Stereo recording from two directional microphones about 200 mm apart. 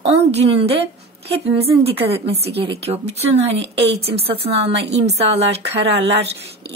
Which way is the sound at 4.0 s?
30° right (ahead or behind).